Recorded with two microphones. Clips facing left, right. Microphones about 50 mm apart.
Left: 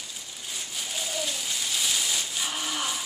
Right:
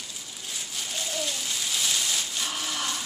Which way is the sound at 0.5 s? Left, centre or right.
Centre.